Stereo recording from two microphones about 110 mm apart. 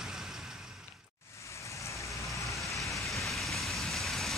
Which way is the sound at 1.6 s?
30° left (ahead or behind).